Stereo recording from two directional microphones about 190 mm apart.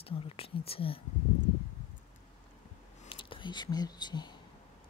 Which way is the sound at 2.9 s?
25° left (ahead or behind).